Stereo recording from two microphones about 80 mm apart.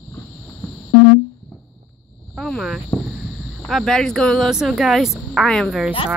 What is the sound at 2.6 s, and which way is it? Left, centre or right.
Speech, centre.